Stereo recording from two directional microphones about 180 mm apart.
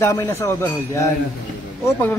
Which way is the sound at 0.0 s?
15° left (ahead or behind).